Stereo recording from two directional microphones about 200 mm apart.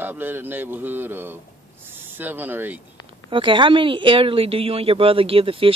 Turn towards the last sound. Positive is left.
turn(degrees=-25)  # may be behind; listen again after turning